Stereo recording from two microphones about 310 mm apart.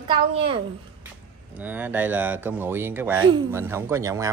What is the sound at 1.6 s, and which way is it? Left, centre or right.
Speech, centre.